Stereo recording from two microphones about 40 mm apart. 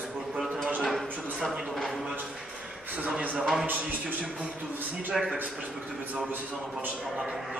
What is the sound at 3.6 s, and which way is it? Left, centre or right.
Speech, right.